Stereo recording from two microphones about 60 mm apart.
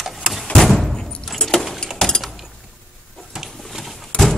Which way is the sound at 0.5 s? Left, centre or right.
Centre.